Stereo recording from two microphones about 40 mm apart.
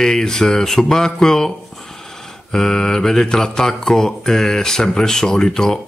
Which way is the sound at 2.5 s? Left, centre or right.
Centre.